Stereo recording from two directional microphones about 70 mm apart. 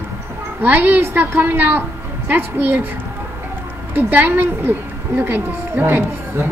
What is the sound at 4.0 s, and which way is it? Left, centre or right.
A woman's voice, right.